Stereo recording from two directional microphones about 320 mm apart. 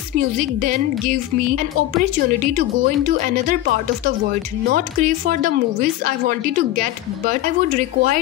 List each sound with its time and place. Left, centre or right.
0.4 s a woman's voice: right